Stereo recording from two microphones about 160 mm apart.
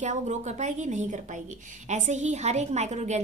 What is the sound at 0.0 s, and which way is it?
A woman's voice, 50° right (ahead or behind).